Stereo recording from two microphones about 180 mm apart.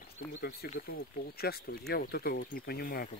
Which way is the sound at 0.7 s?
55° left (ahead or behind).